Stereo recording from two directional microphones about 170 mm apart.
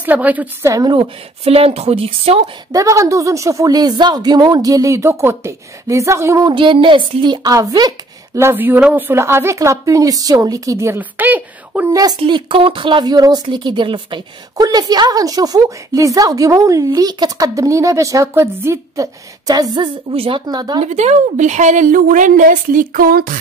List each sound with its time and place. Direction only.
0.0 s a woman's voice: 10° right (ahead or behind); by 2.5 s 35° right (ahead or behind)
2.7 s speech: 20° right (ahead or behind)
11.9 s speech: 20° right (ahead or behind)
20.8 s a woman's voice: 40° right (ahead or behind)